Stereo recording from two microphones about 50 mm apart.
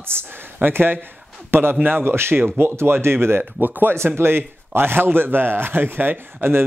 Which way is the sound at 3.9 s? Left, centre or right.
Right.